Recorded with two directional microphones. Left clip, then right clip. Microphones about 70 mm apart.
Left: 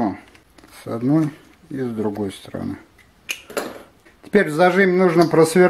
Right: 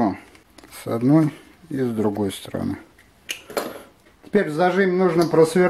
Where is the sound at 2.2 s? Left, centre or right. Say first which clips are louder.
Right 2 dB; right.